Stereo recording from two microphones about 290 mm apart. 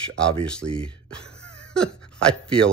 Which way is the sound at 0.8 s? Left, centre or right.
Centre.